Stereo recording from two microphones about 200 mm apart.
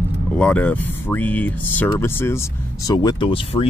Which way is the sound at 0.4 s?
5° left (ahead or behind).